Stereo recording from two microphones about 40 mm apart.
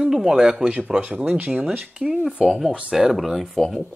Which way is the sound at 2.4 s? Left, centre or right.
Centre.